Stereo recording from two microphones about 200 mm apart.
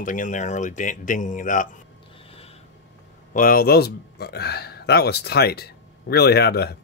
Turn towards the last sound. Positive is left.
turn(degrees=55)  # may be behind; listen again after turning